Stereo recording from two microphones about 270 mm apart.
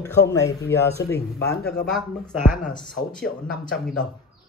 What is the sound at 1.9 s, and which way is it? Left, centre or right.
Speech, centre.